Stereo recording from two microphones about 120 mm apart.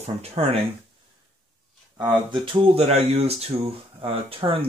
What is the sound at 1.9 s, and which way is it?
Speech, 35° right (ahead or behind).